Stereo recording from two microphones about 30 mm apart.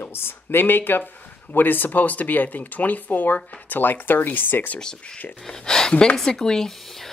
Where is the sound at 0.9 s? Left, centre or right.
Left.